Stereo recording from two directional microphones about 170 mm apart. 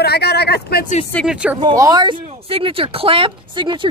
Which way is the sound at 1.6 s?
20° right (ahead or behind).